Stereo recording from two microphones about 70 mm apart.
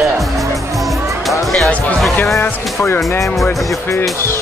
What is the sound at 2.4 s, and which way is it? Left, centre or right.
Speech, left.